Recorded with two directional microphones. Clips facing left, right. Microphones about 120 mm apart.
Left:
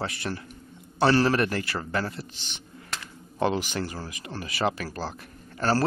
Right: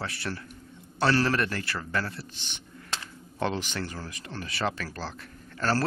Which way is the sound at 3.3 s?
10° left (ahead or behind).